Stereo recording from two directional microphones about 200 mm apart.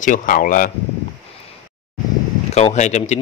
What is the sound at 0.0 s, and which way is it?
Speech, 40° left (ahead or behind).